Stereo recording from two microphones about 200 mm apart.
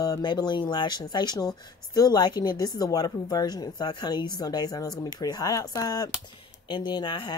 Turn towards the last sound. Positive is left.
turn(degrees=25)  # may be behind; listen again after turning